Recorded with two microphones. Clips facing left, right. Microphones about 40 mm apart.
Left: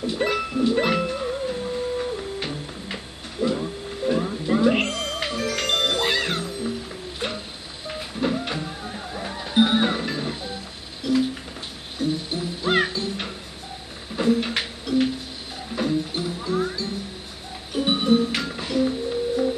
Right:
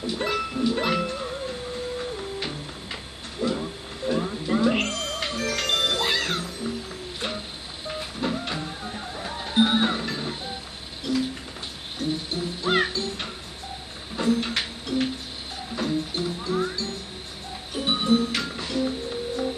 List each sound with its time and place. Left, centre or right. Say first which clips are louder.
0.1 s music: left 2 dB; centre
7.9 s music: left 3 dB; centre
10.3 s music: left 1 dB; right
11.1 s music: left 4 dB; centre
12.3 s music: left 1 dB; centre
14.1 s a sound: left 2 dB; centre
15.7 s music: left 3 dB; centre